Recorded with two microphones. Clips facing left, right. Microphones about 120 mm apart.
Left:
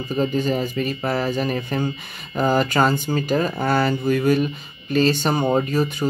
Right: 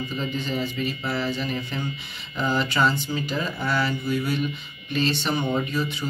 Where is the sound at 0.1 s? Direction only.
45° left (ahead or behind).